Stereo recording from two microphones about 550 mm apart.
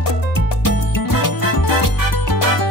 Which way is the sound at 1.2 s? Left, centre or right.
Left.